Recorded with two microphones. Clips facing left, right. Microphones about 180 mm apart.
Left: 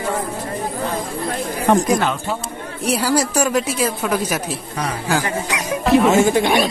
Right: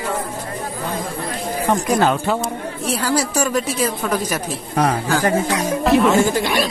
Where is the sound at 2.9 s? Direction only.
10° left (ahead or behind).